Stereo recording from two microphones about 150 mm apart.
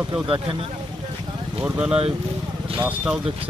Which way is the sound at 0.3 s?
35° right (ahead or behind).